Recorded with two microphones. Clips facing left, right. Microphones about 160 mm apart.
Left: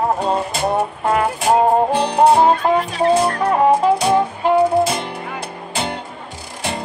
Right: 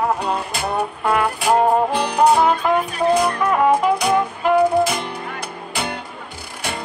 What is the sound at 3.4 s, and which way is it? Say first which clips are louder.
Music: left 2 dB; 30° left (ahead or behind).